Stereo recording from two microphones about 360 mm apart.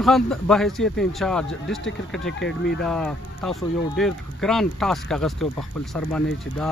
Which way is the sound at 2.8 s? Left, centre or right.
Centre.